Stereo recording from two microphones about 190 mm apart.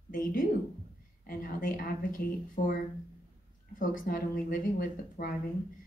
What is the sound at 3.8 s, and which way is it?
A woman's voice, 45° left (ahead or behind).